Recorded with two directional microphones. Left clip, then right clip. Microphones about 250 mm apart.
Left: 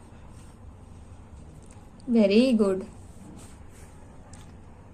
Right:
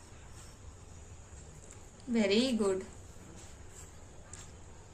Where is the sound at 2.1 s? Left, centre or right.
Centre.